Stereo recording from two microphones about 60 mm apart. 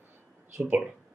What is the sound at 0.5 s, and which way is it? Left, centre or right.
Speech, right.